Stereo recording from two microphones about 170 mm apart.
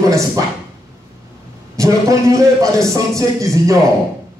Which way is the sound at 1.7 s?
20° right (ahead or behind).